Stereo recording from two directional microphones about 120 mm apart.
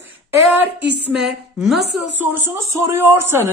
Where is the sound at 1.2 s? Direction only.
5° right (ahead or behind).